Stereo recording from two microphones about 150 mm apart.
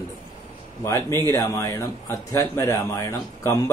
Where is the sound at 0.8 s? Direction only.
20° left (ahead or behind).